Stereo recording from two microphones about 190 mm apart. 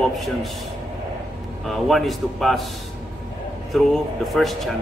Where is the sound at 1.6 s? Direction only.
Centre (ahead or behind).